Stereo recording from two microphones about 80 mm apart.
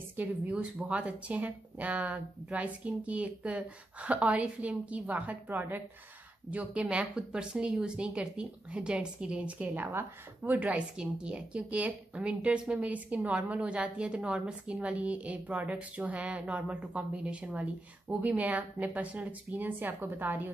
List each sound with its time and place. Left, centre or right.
0.1 s a woman's voice: centre